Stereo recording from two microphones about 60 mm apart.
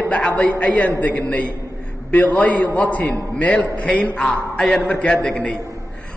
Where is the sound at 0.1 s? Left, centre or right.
Left.